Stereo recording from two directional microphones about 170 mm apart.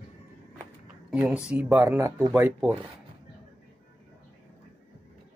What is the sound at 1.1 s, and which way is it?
Speech, 5° right (ahead or behind).